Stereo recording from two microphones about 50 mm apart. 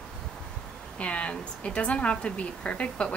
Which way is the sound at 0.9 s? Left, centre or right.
Left.